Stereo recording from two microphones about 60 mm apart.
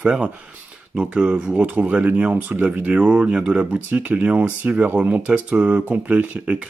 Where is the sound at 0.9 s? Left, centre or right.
Centre.